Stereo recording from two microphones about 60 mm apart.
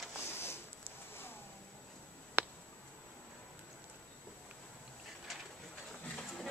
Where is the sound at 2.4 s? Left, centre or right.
Right.